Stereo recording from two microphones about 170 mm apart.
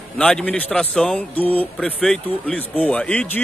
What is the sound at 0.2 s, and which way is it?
A man's voice, 5° left (ahead or behind).